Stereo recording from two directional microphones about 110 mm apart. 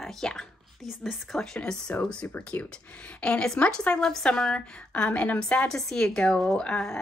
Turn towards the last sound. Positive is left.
turn(degrees=5)  # may be behind; listen again after turning